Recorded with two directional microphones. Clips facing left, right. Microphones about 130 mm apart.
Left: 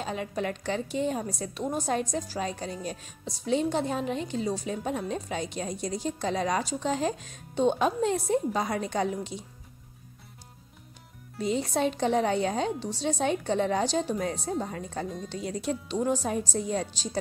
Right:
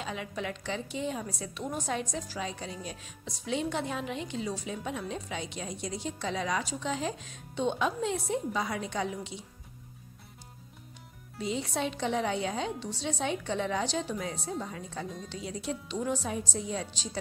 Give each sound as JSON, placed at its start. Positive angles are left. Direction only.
{"t": 0.0, "sound": "a woman's voice", "side_deg": 40}
{"t": 11.4, "sound": "a woman's voice", "side_deg": 45}